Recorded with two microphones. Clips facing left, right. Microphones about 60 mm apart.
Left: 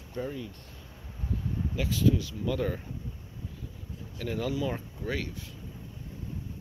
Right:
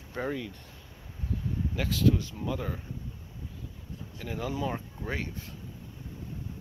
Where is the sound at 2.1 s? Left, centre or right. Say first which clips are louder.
Left 1 dB; right.